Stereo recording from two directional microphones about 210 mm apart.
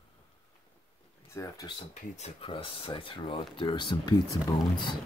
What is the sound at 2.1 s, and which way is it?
Speech, 30° left (ahead or behind).